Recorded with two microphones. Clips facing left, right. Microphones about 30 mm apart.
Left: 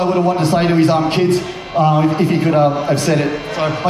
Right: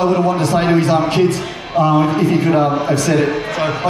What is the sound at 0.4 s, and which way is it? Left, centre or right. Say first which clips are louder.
Speech: left 1 dB; left.